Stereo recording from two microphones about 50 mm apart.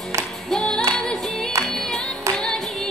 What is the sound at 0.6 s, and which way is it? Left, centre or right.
Music, centre.